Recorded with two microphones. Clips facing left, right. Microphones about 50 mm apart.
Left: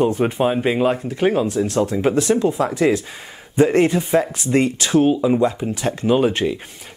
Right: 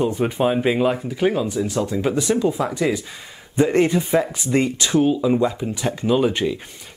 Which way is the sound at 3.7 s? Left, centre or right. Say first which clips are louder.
Left 1 dB; centre.